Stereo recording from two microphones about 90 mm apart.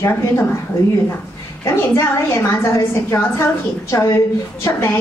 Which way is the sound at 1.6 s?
30° left (ahead or behind).